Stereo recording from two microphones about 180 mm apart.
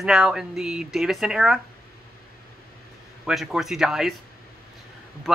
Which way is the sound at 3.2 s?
5° right (ahead or behind).